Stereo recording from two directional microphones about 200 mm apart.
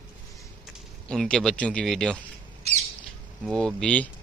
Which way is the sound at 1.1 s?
5° left (ahead or behind).